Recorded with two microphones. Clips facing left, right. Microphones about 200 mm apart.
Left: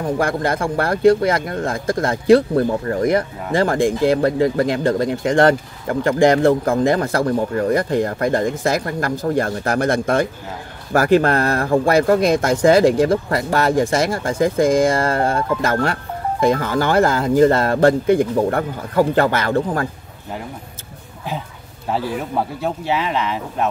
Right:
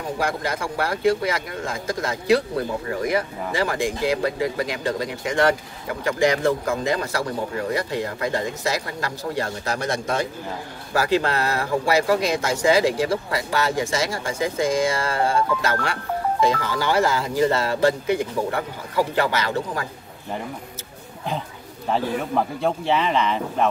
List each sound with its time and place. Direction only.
0.2 s speech: 55° left (ahead or behind)
21.9 s speech: 5° left (ahead or behind)